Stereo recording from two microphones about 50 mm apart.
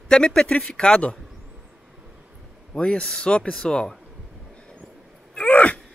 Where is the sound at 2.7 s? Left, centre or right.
Centre.